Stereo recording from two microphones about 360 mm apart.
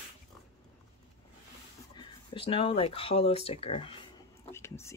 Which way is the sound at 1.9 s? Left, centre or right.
Centre.